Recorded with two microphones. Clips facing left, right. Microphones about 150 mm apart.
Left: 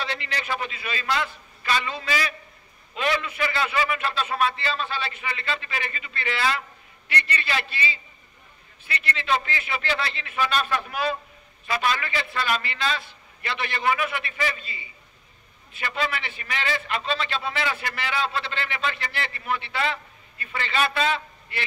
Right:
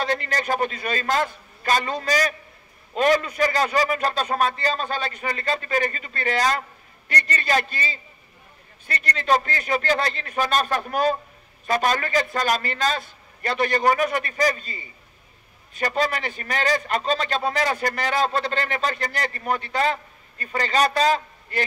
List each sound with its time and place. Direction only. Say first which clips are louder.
0.0 s a man's voice: right 6 dB; 45° right (ahead or behind)